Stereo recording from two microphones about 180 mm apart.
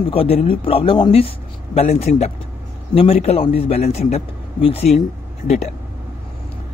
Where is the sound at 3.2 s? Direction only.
30° left (ahead or behind).